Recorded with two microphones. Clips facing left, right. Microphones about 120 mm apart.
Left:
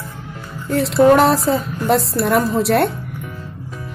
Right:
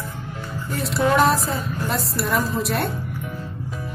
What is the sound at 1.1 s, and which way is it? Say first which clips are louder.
Speech: left 5 dB; 80° left.